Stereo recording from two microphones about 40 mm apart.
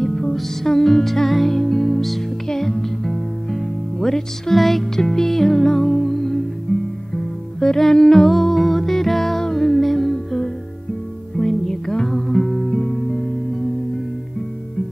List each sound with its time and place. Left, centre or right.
0.0 s music: centre
6.7 s music: left
7.2 s music: centre
9.8 s music: centre